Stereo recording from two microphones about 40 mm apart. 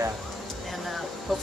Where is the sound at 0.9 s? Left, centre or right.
Centre.